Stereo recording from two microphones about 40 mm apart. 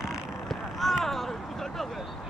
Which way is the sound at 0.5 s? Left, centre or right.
Centre.